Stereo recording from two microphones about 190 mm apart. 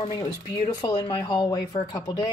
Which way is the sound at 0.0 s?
20° left (ahead or behind).